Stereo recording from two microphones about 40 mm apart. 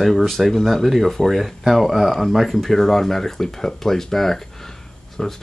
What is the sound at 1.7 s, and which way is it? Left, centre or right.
Speech, centre.